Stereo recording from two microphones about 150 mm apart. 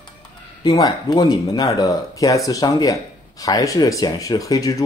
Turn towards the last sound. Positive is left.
turn(degrees=25)  # may be behind; listen again after turning